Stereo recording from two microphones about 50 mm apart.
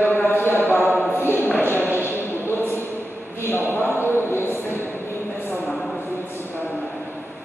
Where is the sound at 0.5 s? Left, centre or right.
Left.